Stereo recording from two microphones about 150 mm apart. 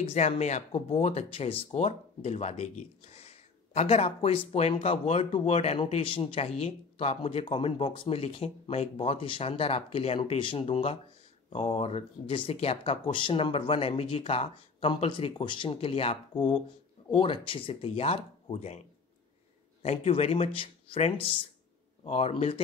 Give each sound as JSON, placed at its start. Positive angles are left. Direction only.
{"t": 0.0, "sound": "speech", "side_deg": 45}